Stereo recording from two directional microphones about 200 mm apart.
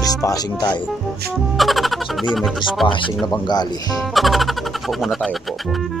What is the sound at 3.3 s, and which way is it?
Speech, 20° left (ahead or behind).